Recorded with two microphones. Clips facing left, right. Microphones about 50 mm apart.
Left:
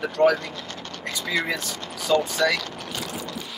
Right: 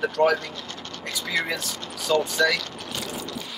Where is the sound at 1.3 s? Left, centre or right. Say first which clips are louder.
Left 1 dB; centre.